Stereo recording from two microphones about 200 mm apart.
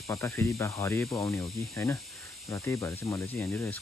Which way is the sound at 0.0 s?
15° left (ahead or behind).